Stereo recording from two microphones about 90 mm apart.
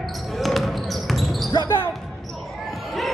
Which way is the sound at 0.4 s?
Centre (ahead or behind).